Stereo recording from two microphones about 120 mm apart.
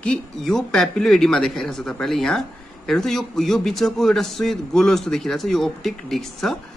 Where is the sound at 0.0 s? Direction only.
5° left (ahead or behind).